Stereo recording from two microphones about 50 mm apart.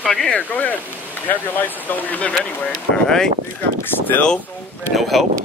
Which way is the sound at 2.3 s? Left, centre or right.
Centre.